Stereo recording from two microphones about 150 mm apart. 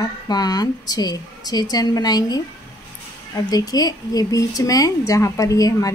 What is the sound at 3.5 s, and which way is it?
Speech, 25° left (ahead or behind).